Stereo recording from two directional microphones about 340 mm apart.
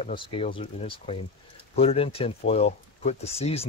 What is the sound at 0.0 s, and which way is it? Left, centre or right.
Speech, centre.